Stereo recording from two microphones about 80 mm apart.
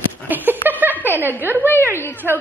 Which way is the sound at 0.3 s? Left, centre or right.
Right.